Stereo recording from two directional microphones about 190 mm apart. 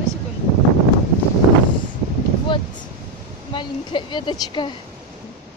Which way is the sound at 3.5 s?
25° left (ahead or behind).